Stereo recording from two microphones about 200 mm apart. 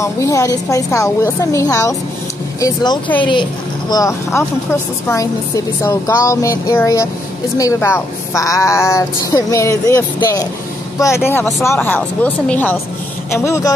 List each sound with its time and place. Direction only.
0.0 s speech: 15° left (ahead or behind)